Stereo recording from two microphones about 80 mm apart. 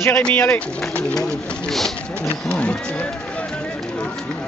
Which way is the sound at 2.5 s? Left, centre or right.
Centre.